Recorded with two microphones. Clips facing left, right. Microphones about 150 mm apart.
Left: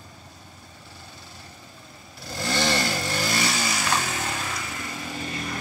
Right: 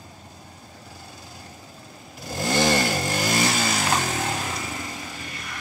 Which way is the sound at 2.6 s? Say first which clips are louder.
Right 4 dB; 45° right (ahead or behind).